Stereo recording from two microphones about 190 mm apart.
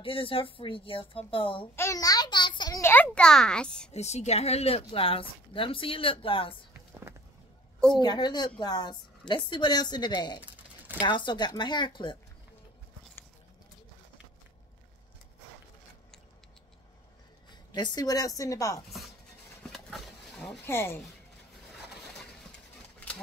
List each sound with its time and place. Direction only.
0.0 s speech: 30° left (ahead or behind)
1.8 s a child's voice: 15° left (ahead or behind)
2.8 s a child's voice: 10° left (ahead or behind)
3.9 s speech: 35° left (ahead or behind)
7.9 s speech: 20° left (ahead or behind)
17.5 s a woman's voice: 25° left (ahead or behind)
19.7 s a sound: centre (ahead or behind)
22.9 s a sound: 5° left (ahead or behind)